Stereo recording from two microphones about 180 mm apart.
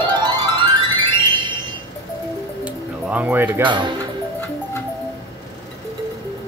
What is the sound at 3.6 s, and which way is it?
Speech, 25° right (ahead or behind).